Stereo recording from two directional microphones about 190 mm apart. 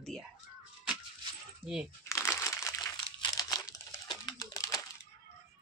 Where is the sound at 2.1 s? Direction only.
15° left (ahead or behind).